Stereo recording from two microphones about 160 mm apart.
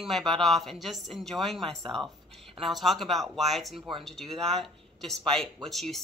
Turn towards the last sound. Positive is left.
turn(degrees=0)  # may be behind; listen again after turning